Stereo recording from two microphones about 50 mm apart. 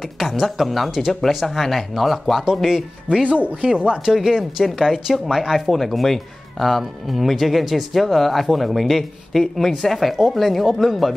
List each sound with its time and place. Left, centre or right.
0.2 s speech: centre
3.1 s speech: right
4.1 s speech: centre